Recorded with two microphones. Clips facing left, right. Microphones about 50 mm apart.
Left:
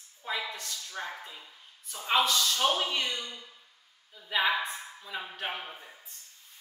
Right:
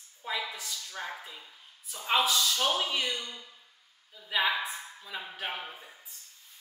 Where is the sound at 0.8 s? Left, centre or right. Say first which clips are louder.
Left 2 dB; centre.